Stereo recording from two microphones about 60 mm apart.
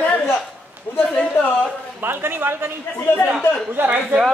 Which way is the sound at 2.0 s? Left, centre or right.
Right.